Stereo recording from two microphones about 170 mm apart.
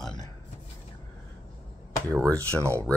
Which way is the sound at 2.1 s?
5° left (ahead or behind).